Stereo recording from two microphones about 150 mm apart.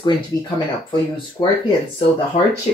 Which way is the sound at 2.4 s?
50° left (ahead or behind).